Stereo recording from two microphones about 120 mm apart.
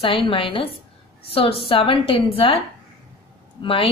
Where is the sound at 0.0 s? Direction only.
50° left (ahead or behind).